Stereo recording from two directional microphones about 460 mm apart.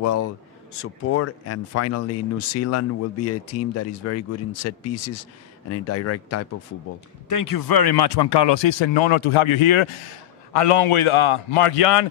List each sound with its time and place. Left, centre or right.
0.0 s speech: left
7.2 s a man's voice: left